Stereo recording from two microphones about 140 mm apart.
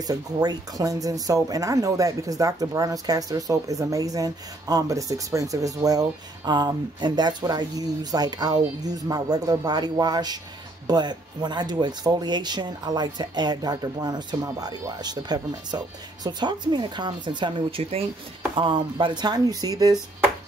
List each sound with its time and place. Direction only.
0.0 s speech: 30° right (ahead or behind)